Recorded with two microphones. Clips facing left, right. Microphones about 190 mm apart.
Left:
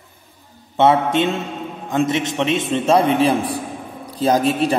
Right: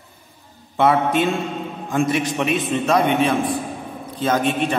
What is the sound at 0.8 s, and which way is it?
A man's voice, 25° left (ahead or behind).